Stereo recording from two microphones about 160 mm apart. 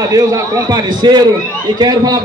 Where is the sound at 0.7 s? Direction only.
25° right (ahead or behind).